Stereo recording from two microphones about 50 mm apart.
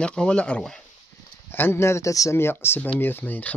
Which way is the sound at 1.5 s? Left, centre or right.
Left.